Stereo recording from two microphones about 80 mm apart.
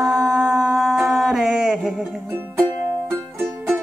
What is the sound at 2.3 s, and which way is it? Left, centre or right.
Music, right.